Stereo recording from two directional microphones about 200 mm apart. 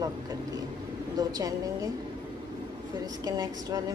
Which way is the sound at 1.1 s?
20° right (ahead or behind).